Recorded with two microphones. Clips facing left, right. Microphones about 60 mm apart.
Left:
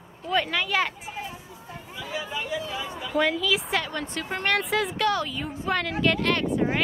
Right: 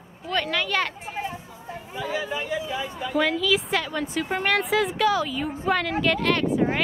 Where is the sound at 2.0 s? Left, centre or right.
Right.